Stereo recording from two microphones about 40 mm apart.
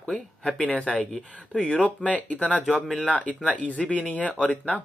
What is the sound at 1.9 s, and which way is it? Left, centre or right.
Speech, left.